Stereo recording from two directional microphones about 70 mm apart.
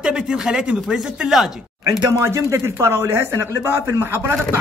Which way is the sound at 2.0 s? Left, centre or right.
Right.